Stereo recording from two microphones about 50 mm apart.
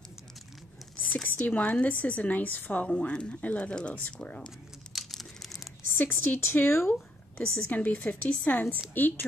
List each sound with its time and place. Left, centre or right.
1.1 s a woman's voice: left
3.0 s speech: left
4.9 s typing: centre
5.9 s speech: left
6.9 s a woman's voice: left